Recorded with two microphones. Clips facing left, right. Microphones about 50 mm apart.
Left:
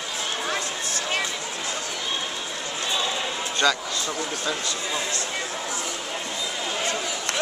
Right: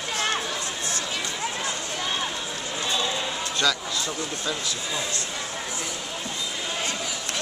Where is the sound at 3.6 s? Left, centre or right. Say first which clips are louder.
Left 3 dB; centre.